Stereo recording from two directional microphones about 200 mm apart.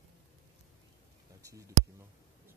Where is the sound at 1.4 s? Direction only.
15° right (ahead or behind).